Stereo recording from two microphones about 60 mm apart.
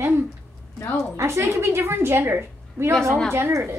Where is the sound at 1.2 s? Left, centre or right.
Right.